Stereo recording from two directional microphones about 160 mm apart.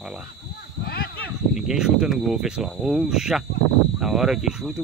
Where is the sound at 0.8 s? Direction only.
70° left (ahead or behind).